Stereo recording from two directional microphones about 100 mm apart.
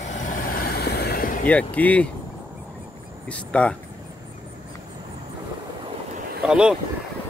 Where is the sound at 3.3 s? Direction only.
10° left (ahead or behind).